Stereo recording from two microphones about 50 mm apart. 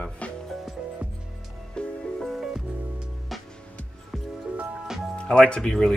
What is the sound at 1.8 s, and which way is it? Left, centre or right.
Music, centre.